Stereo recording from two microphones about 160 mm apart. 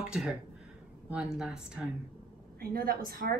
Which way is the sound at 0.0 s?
5° right (ahead or behind).